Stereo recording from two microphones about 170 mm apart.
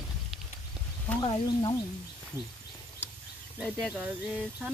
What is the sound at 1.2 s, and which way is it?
Speech, 25° left (ahead or behind).